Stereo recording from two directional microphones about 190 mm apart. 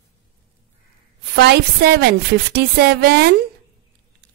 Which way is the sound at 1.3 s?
60° right (ahead or behind).